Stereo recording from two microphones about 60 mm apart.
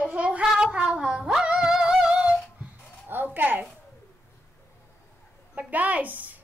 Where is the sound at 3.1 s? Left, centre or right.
Right.